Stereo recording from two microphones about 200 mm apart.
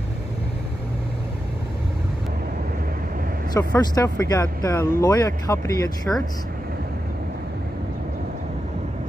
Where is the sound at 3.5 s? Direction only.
20° left (ahead or behind).